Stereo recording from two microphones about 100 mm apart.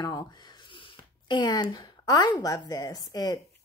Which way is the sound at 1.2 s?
45° left (ahead or behind).